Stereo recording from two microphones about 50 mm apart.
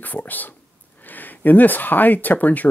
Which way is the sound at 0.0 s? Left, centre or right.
Left.